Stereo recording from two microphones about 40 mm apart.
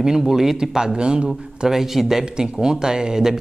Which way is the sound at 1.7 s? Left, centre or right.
Centre.